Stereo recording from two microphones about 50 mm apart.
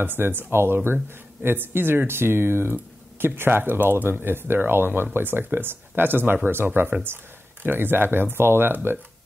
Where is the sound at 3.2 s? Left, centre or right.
Right.